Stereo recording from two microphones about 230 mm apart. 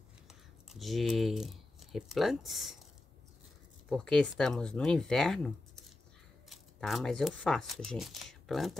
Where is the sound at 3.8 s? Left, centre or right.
Centre.